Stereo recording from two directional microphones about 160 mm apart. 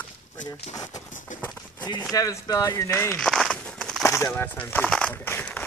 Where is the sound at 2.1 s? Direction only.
20° left (ahead or behind).